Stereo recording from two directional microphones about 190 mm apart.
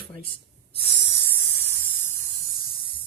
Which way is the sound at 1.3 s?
10° left (ahead or behind).